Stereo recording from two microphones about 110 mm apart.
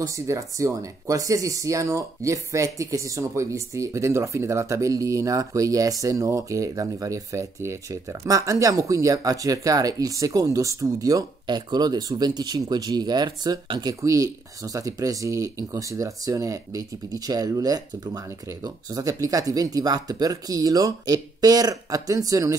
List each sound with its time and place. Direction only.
0.0 s speech: 30° right (ahead or behind)